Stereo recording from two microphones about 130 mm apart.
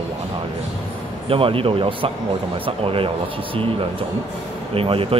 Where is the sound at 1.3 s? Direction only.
45° right (ahead or behind).